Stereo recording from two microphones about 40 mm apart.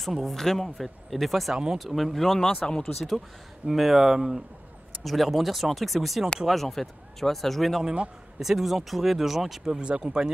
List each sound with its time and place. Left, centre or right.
0.0 s speech: centre
1.5 s speech: centre
1.8 s speech: centre
3.6 s speech: centre
5.0 s speech: centre
8.4 s speech: centre
9.7 s speech: right